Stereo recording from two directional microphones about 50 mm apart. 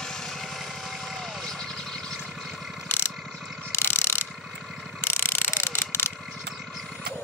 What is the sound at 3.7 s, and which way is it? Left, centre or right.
Mechanisms, left.